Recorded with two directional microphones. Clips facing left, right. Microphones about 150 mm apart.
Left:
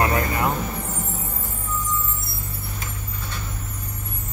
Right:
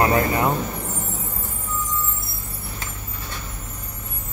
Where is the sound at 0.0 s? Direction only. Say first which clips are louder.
Right 3 dB; 25° right (ahead or behind).